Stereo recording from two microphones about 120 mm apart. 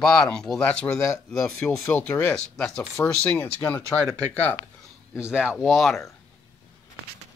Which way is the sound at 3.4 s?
20° left (ahead or behind).